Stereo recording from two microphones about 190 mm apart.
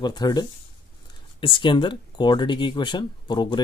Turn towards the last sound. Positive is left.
turn(degrees=25)  # may be behind; listen again after turning